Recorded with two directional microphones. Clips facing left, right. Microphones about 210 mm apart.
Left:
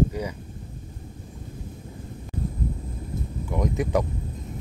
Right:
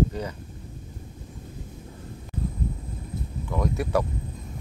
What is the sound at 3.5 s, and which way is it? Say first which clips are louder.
Speech: left 1 dB; 15° left (ahead or behind).